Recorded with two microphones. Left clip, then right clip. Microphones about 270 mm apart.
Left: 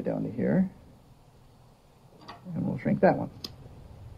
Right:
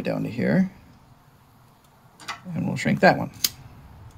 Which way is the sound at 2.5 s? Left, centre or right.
Right.